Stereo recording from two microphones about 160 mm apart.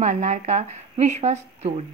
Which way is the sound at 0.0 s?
50° right (ahead or behind).